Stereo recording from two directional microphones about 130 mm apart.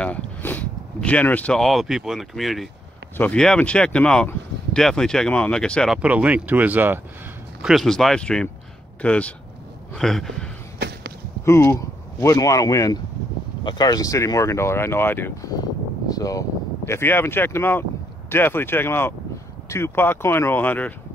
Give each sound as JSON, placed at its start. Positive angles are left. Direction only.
{"t": 0.0, "sound": "speech", "side_deg": 10}
{"t": 5.9, "sound": "speech", "side_deg": -10}
{"t": 7.6, "sound": "speech", "side_deg": 0}
{"t": 11.4, "sound": "speech", "side_deg": 20}
{"t": 16.1, "sound": "speech", "side_deg": 25}